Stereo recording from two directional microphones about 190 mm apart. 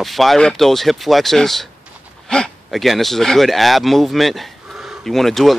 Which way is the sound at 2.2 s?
5° left (ahead or behind).